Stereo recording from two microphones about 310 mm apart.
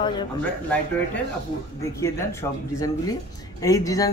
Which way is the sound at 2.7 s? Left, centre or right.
Centre.